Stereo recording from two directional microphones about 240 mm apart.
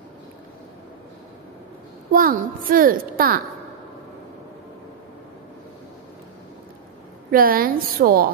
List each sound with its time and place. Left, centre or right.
2.1 s a child's voice: right
7.2 s a child's voice: right